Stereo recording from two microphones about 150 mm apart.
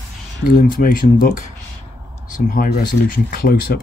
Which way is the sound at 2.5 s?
65° left (ahead or behind).